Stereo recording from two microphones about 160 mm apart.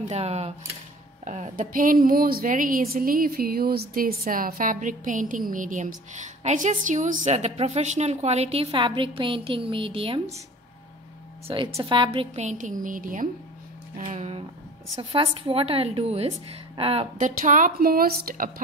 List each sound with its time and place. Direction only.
0.1 s a woman's voice: 40° right (ahead or behind)
11.4 s a woman's voice: 30° right (ahead or behind)
15.0 s a woman's voice: 35° right (ahead or behind)
17.3 s a woman's voice: 55° right (ahead or behind)